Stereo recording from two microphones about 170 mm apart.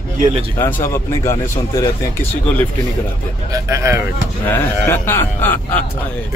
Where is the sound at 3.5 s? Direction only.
15° right (ahead or behind).